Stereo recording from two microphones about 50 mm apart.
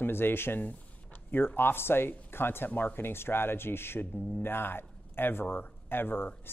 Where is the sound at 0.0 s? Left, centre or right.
Left.